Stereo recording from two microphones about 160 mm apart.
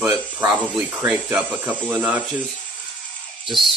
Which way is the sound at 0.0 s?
5° right (ahead or behind).